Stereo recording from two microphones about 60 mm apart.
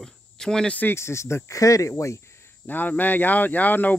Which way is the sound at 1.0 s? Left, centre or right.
Left.